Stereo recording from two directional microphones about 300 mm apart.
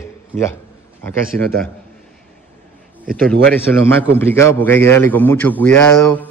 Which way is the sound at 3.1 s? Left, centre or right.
Centre.